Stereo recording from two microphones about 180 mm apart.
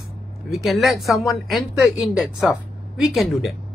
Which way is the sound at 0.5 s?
Centre (ahead or behind).